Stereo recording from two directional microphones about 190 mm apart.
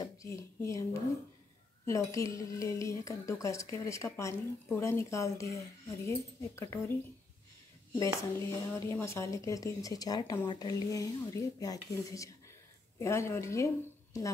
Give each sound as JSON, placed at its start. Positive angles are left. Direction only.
{"t": 0.0, "sound": "a woman's voice", "side_deg": 15}
{"t": 1.9, "sound": "a woman's voice", "side_deg": 15}
{"t": 7.9, "sound": "a woman's voice", "side_deg": 15}